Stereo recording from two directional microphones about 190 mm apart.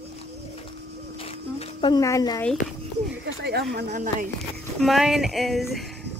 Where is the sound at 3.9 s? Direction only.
40° right (ahead or behind).